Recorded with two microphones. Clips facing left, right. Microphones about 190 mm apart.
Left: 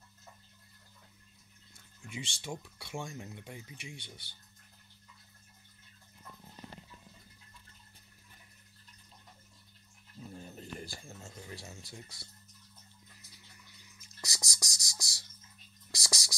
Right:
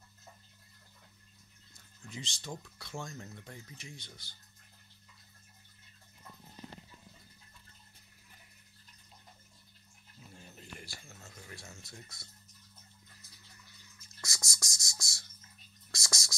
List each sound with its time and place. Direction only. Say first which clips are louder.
2.0 s speech: left 2 dB; 10° left (ahead or behind)
10.2 s a sound: left 7 dB; 35° left (ahead or behind)
12.2 s speech: left 3 dB; 35° left (ahead or behind)
14.0 s whispering: left 2 dB; 15° left (ahead or behind)